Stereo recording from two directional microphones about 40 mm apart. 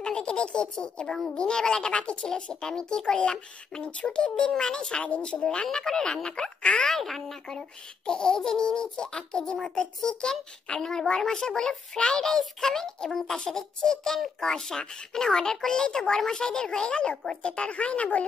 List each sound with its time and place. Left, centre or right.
0.0 s speech: left
6.6 s speech: left
6.9 s a child's voice: centre
8.1 s a child's voice: centre; by 18.2 s left